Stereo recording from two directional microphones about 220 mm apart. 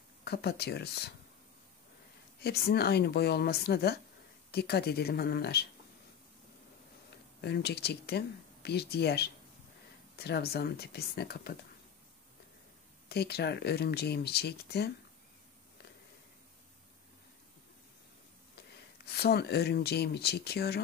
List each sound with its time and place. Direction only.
0.2 s speech: 45° left (ahead or behind)
2.4 s speech: 45° left (ahead or behind)
7.4 s speech: 45° left (ahead or behind)
13.1 s speech: 45° left (ahead or behind)
19.0 s speech: 45° left (ahead or behind)